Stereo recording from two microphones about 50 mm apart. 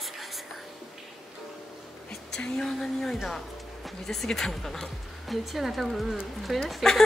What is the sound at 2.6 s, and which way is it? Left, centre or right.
A woman's voice, centre.